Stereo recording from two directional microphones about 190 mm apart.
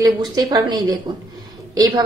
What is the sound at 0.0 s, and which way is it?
A woman's voice, 20° right (ahead or behind).